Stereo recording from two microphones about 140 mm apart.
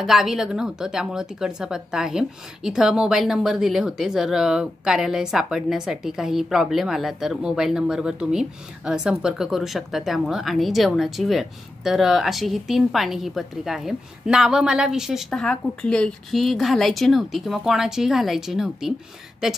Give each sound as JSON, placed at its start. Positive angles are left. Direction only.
{"t": 0.0, "sound": "speech", "side_deg": -5}